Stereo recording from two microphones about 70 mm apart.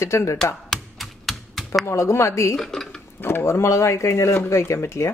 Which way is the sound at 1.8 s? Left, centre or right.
Left.